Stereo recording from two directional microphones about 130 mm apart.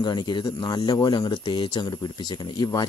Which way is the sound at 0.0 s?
35° left (ahead or behind).